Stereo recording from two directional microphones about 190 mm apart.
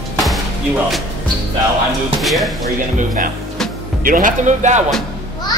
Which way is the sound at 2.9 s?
45° right (ahead or behind).